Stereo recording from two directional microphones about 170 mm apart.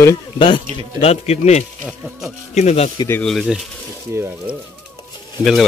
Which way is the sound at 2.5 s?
40° left (ahead or behind).